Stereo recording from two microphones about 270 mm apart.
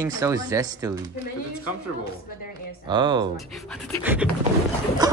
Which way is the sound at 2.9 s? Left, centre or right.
Centre.